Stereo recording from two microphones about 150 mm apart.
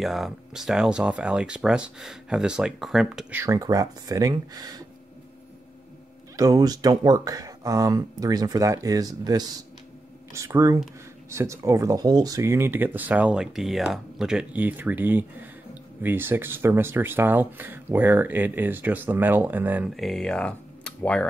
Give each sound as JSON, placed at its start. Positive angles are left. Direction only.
{"t": 0.0, "sound": "speech", "side_deg": 0}
{"t": 3.4, "sound": "speech", "side_deg": -25}
{"t": 6.3, "sound": "speech", "side_deg": -25}
{"t": 20.0, "sound": "speech", "side_deg": 5}